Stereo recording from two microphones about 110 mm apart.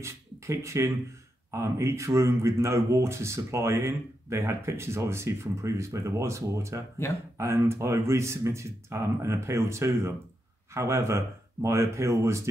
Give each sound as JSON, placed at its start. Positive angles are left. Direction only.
{"t": 0.0, "sound": "speech", "side_deg": -25}